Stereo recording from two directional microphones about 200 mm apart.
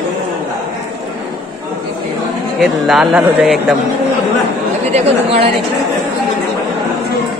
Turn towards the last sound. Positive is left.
turn(degrees=-30)  # may be behind; listen again after turning